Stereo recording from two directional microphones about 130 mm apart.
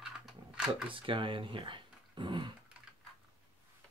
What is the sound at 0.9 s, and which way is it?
Speech, 40° right (ahead or behind).